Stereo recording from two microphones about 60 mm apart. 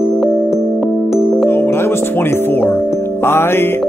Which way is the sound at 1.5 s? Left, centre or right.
Left.